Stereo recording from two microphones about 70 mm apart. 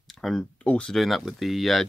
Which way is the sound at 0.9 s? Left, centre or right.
Centre.